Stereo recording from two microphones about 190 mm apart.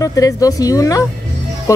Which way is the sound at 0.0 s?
20° left (ahead or behind).